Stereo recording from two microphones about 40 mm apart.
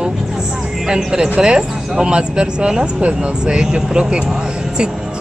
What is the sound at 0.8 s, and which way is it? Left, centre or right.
Speech, centre.